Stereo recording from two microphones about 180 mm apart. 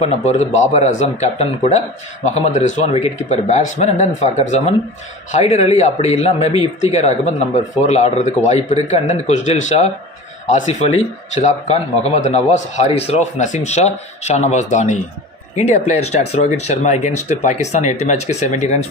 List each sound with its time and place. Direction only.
0.0 s a man's voice: 35° left (ahead or behind)